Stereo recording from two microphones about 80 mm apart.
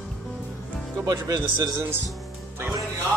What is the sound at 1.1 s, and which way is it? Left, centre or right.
Speech, right.